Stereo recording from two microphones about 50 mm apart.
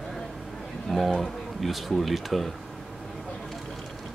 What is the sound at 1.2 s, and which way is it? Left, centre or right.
Speech, centre.